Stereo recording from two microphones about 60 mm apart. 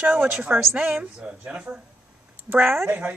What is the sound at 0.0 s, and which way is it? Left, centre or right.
Speech, right.